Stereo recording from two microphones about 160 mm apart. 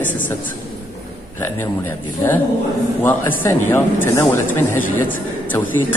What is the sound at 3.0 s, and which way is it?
Speech, 15° left (ahead or behind).